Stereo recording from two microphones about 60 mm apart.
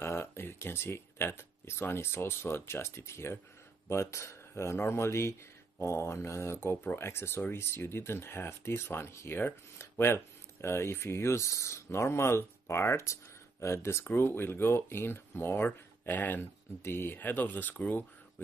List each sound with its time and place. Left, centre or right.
0.0 s speech: left
14.0 s speech: left